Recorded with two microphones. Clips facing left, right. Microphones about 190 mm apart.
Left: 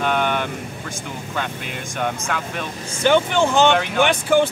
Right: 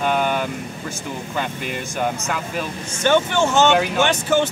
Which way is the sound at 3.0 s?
15° left (ahead or behind).